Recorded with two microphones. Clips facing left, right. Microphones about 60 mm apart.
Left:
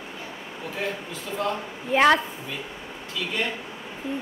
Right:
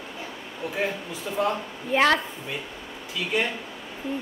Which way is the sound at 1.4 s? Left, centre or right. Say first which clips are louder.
Right 2 dB; centre.